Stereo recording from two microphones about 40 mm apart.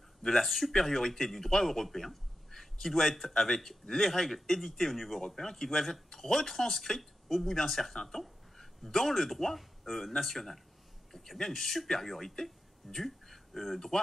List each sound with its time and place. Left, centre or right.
0.2 s a man's voice: centre
0.7 s a man's voice: centre
5.2 s speech: centre
12.4 s a sound: centre
13.7 s speech: centre